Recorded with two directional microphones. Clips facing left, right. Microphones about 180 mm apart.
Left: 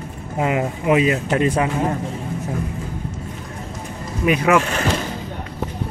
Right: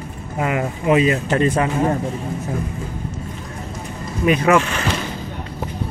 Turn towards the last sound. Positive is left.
turn(degrees=40)  # may be behind; listen again after turning